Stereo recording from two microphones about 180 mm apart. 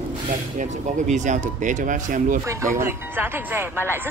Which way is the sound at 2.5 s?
15° right (ahead or behind).